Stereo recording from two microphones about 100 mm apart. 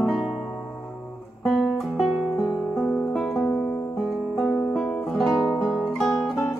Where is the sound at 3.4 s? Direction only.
20° left (ahead or behind).